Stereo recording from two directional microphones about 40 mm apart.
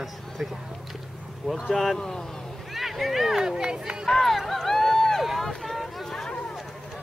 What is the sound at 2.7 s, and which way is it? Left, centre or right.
Speech, centre.